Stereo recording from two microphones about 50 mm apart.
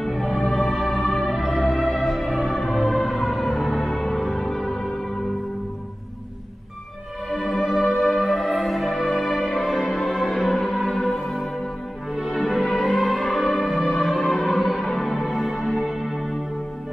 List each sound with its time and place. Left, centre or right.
0.0 s music: centre
1.3 s music: centre
7.2 s music: centre
9.8 s music: centre
10.0 s music: centre